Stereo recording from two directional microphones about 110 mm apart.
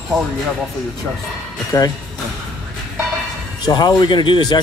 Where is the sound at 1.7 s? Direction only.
30° left (ahead or behind).